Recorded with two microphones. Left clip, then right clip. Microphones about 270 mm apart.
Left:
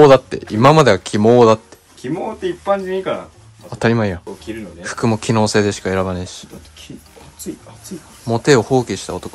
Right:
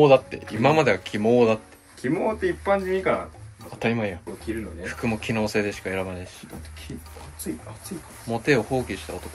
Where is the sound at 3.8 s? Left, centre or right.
Left.